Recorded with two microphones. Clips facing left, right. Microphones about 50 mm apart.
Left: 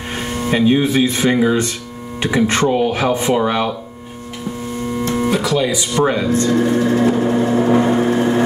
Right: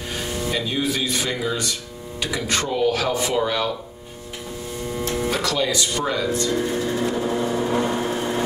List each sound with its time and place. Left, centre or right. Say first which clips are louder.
0.1 s speech: left 6 dB; left
5.3 s speech: left 5 dB; centre
5.9 s speech: left 12 dB; left
6.5 s vehicle: left 8 dB; left